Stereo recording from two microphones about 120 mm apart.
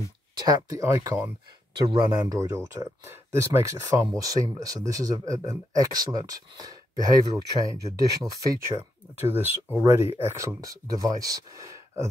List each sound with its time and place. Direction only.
0.4 s speech: 30° right (ahead or behind)
9.2 s speech: 15° right (ahead or behind)